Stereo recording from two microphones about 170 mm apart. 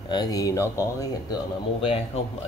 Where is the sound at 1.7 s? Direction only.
35° left (ahead or behind).